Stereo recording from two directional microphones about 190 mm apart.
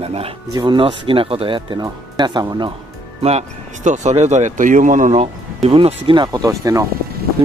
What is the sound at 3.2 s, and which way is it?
Speech, 35° right (ahead or behind).